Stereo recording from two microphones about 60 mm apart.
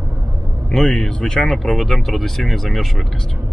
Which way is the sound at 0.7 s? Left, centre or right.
Centre.